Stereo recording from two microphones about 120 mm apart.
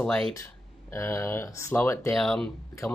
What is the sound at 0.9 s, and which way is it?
Speech, 25° left (ahead or behind).